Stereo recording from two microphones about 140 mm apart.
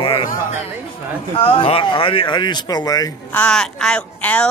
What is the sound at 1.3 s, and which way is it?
Speech, 45° left (ahead or behind).